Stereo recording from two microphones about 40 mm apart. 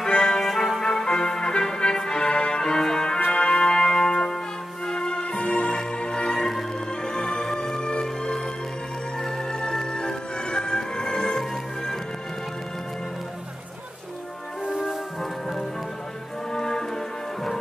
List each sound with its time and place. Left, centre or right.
0.1 s music: centre
3.3 s music: left
16.5 s music: centre